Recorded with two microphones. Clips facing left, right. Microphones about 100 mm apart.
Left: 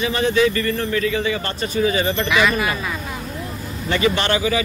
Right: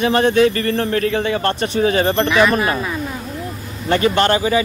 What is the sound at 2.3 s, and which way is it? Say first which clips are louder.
Speech: right 4 dB; 40° right (ahead or behind).